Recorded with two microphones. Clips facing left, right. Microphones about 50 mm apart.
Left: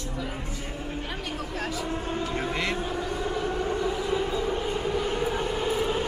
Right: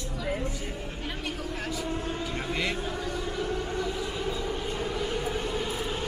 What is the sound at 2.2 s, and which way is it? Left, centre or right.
Siren, centre.